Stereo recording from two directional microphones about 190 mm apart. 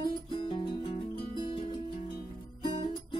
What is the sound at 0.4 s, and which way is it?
Music, 25° left (ahead or behind).